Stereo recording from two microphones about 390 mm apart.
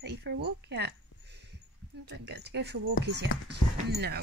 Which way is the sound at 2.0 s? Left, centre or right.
Right.